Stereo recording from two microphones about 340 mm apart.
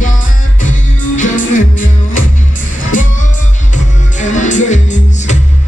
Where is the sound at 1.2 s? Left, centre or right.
Left.